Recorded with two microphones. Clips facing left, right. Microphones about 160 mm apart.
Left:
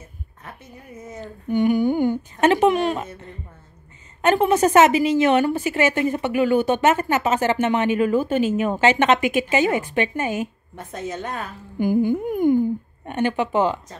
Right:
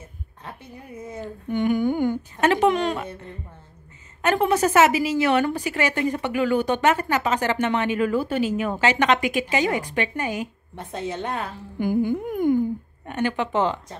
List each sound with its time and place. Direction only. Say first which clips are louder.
1.5 s speech: left 3 dB; 15° left (ahead or behind)
4.2 s speech: left 3 dB; 20° left (ahead or behind)
10.9 s a woman's voice: right 1 dB; 15° right (ahead or behind)
11.8 s speech: left 3 dB; 15° left (ahead or behind)